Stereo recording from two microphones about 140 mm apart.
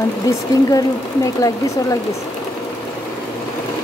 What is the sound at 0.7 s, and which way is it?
Speech, 25° left (ahead or behind).